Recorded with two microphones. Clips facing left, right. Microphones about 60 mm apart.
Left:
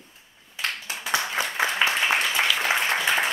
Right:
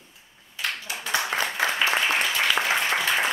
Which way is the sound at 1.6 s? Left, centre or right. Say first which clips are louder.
Left 1 dB; centre.